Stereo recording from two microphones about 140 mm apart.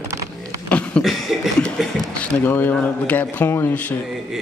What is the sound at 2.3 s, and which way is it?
Speech, 15° left (ahead or behind).